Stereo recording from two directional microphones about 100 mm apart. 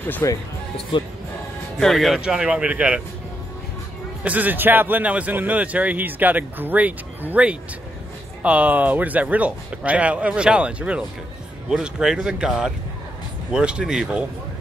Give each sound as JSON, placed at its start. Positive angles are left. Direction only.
{"t": 0.2, "sound": "speech", "side_deg": 30}
{"t": 0.9, "sound": "speech", "side_deg": 55}
{"t": 1.8, "sound": "speech", "side_deg": 0}
{"t": 4.2, "sound": "speech", "side_deg": -15}